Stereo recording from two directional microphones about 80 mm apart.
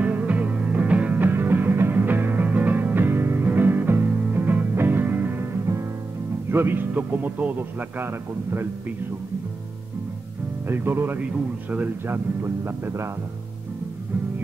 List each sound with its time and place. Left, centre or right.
0.0 s music: centre; by 5.9 s right
6.5 s speech: right
10.7 s speech: right